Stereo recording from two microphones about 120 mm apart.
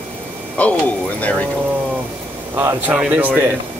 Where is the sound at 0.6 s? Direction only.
10° left (ahead or behind).